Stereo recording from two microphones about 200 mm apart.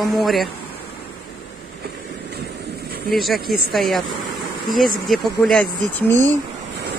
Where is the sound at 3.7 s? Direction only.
Centre (ahead or behind).